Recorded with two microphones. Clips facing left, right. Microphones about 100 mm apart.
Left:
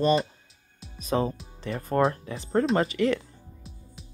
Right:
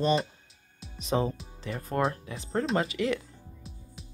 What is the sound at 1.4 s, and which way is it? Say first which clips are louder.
Speech: left 3 dB; centre (ahead or behind).